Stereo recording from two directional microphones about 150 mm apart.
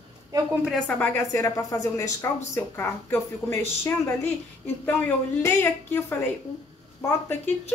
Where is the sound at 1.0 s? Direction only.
20° left (ahead or behind).